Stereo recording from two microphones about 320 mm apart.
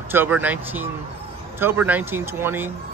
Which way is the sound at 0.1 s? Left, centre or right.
Centre.